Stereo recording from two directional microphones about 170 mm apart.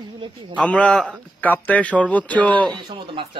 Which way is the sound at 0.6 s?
5° left (ahead or behind).